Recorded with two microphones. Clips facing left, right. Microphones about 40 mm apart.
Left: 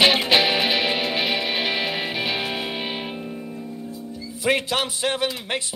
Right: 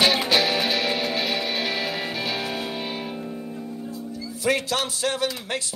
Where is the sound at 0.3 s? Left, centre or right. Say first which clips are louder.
Left 2 dB; left.